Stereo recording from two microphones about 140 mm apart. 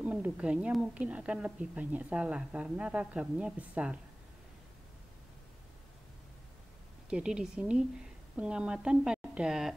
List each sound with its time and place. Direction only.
0.0 s a woman's voice: 10° right (ahead or behind)
7.1 s a woman's voice: 5° right (ahead or behind)